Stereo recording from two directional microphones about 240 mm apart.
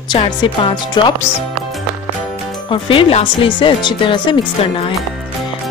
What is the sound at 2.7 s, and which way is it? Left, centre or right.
Speech, left.